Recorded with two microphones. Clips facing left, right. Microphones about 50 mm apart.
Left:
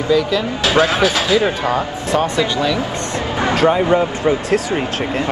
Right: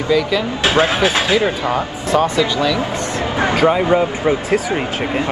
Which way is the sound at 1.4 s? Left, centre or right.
Centre.